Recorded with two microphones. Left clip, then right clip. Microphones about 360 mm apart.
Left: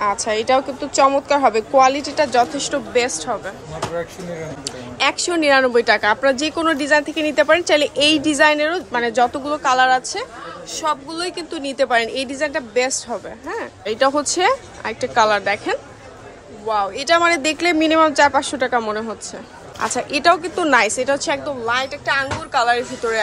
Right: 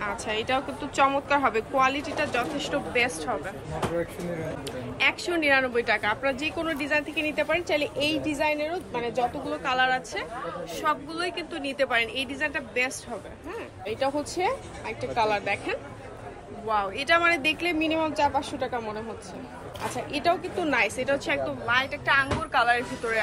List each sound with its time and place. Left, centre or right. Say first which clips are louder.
0.0 s a woman's voice: left 10 dB; centre
4.6 s a woman's voice: left 6 dB; centre
20.1 s a woman's voice: left 10 dB; left